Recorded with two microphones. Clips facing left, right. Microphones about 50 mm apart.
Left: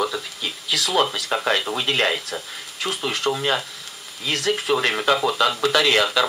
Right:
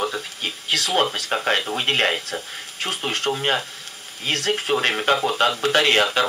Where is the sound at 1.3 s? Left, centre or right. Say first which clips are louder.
Left 2 dB; right.